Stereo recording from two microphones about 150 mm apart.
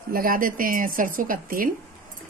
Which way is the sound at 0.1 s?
70° right (ahead or behind).